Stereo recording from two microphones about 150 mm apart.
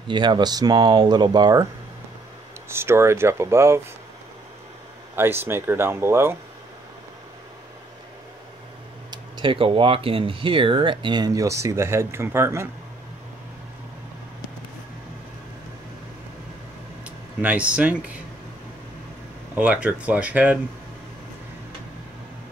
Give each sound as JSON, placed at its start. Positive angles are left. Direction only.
{"t": 0.1, "sound": "speech", "side_deg": -30}
{"t": 2.7, "sound": "speech", "side_deg": -15}
{"t": 5.1, "sound": "speech", "side_deg": -15}
{"t": 9.1, "sound": "speech", "side_deg": -35}
{"t": 17.0, "sound": "speech", "side_deg": -10}
{"t": 19.5, "sound": "speech", "side_deg": -10}